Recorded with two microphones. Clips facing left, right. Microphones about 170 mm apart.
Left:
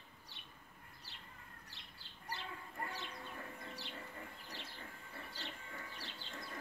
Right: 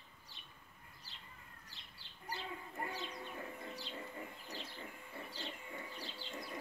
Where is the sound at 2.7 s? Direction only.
20° right (ahead or behind).